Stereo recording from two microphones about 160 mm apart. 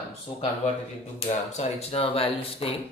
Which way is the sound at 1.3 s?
45° left (ahead or behind).